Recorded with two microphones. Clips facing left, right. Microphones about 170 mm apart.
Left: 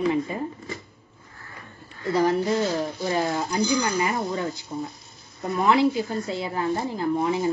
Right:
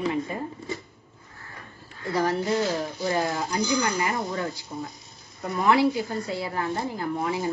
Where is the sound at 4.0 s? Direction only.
20° left (ahead or behind).